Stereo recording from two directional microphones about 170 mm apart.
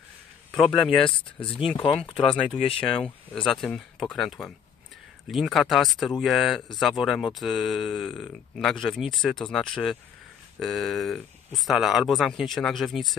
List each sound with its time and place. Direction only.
1.5 s speech: 5° left (ahead or behind)
1.8 s speech: 30° left (ahead or behind)
3.3 s speech: centre (ahead or behind)